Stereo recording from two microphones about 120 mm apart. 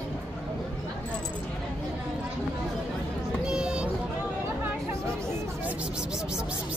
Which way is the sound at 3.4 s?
5° right (ahead or behind).